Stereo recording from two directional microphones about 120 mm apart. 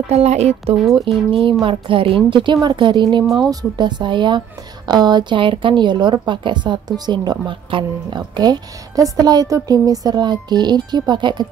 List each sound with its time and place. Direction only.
0.1 s speech: 65° right (ahead or behind)
1.3 s a woman's voice: 45° right (ahead or behind)